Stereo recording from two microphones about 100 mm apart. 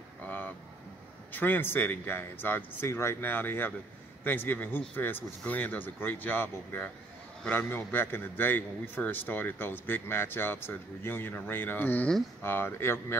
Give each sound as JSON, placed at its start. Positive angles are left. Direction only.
{"t": 1.3, "sound": "a man's voice", "side_deg": 20}